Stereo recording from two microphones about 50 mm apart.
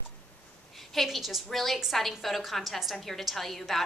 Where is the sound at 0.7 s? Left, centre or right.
Centre.